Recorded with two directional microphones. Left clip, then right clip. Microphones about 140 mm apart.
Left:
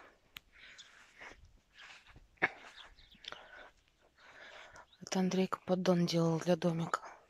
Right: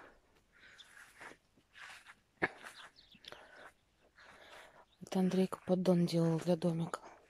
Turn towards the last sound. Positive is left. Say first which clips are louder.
# left 4 dB
turn(degrees=5)  # may be behind; listen again after turning